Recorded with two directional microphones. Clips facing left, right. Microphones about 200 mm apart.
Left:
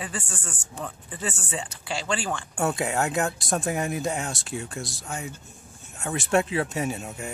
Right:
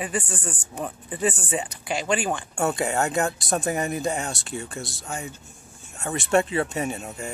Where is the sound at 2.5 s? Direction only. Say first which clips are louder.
Even; centre (ahead or behind).